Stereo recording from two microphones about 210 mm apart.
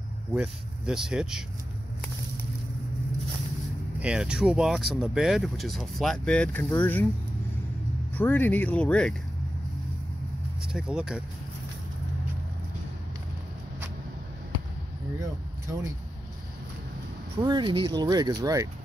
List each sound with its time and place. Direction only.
0.3 s speech: 5° right (ahead or behind)
4.0 s speech: 5° right (ahead or behind)
8.1 s speech: 10° left (ahead or behind)
10.7 s speech: 5° right (ahead or behind)
17.4 s speech: 20° right (ahead or behind)